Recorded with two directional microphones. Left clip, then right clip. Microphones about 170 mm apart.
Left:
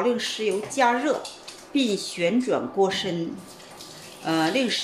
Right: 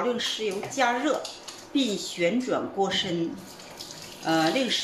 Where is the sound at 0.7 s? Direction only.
35° left (ahead or behind).